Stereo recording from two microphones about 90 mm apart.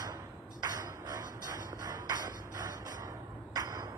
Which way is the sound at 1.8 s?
50° right (ahead or behind).